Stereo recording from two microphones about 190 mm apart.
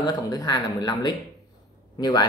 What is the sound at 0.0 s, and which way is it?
Speech, 20° left (ahead or behind).